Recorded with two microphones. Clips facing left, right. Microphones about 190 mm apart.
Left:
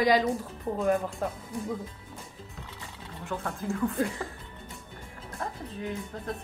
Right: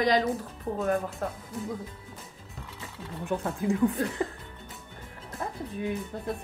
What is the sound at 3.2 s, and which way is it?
Speech, 15° right (ahead or behind).